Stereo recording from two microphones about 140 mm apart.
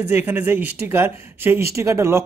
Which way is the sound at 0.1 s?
15° right (ahead or behind).